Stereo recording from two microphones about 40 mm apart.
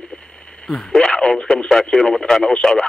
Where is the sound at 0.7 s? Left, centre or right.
Centre.